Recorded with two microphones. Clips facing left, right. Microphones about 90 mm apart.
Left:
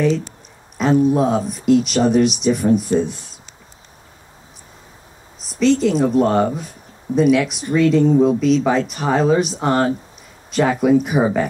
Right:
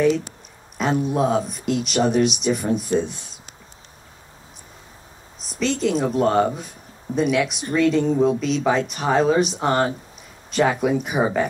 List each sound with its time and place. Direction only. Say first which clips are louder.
0.7 s speech: left 6 dB; centre (ahead or behind)
5.4 s speech: left 7 dB; centre (ahead or behind)